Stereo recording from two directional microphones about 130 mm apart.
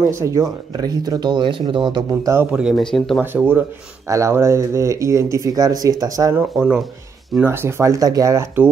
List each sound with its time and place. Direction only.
0.0 s speech: 20° right (ahead or behind); by 2.0 s 40° right (ahead or behind)
2.0 s speech: 20° right (ahead or behind)
2.5 s speech: centre (ahead or behind)
4.1 s speech: 20° right (ahead or behind)
7.3 s speech: 15° right (ahead or behind)